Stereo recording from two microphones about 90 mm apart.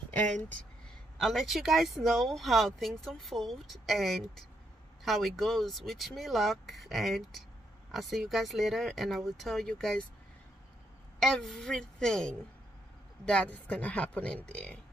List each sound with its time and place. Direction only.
0.8 s a woman's voice: 5° left (ahead or behind)
11.1 s speech: 5° left (ahead or behind)